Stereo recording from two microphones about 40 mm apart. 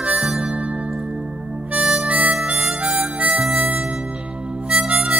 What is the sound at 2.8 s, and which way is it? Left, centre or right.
Harmonica, right.